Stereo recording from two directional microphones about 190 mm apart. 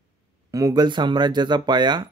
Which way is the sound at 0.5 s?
20° right (ahead or behind).